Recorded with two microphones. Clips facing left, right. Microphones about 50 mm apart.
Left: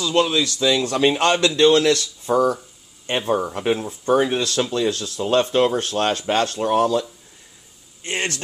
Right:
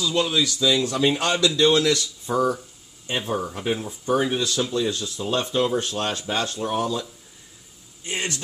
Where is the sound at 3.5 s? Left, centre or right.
Left.